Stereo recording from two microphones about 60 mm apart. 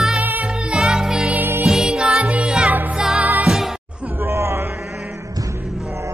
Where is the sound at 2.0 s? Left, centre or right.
Right.